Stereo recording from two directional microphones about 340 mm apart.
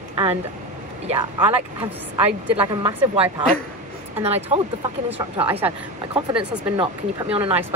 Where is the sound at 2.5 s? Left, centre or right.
Centre.